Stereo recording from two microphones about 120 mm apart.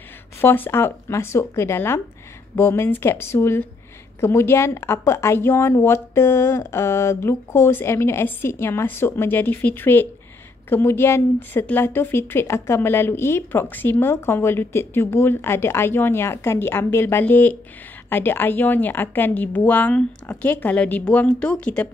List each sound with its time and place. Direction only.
0.4 s a woman's voice: 20° left (ahead or behind)